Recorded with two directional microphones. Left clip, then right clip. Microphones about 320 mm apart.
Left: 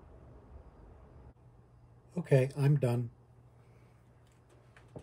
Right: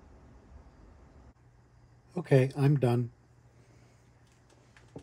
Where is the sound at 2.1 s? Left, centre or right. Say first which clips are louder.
Right 3 dB; right.